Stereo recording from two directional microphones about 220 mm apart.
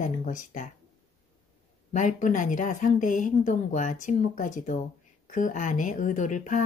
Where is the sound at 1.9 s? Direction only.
35° left (ahead or behind).